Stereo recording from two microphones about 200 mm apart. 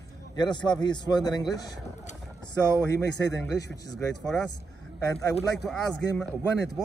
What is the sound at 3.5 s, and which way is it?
Speech, 15° left (ahead or behind).